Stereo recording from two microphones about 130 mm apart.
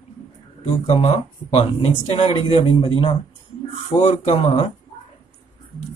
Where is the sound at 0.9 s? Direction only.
60° left (ahead or behind).